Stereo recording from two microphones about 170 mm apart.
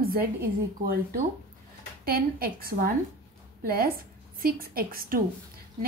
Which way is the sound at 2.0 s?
60° right (ahead or behind).